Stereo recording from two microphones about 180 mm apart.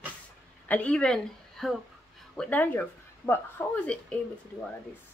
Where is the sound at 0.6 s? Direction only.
10° left (ahead or behind).